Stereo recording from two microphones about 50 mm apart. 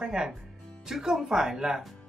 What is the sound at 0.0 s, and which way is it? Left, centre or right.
Speech, centre.